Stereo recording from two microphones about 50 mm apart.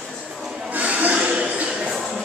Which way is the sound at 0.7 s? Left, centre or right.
Right.